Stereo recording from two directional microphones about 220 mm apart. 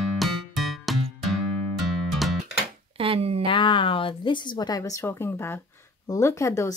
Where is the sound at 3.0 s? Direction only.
25° right (ahead or behind).